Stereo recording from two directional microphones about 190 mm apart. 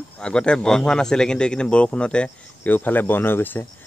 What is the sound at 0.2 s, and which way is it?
A man's voice, 5° left (ahead or behind).